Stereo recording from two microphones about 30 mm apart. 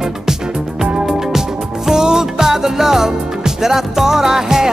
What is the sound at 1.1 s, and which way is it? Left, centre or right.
Music, centre.